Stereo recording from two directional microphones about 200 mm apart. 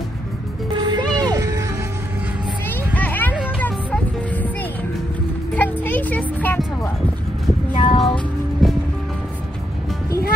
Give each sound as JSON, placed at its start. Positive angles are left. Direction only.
{"t": 0.7, "sound": "music", "side_deg": -20}
{"t": 3.0, "sound": "music", "side_deg": 10}
{"t": 5.6, "sound": "music", "side_deg": 10}
{"t": 7.7, "sound": "music", "side_deg": 25}
{"t": 8.0, "sound": "music", "side_deg": 0}